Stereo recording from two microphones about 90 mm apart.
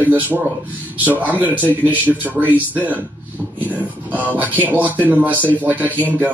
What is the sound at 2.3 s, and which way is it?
Speech, 10° right (ahead or behind).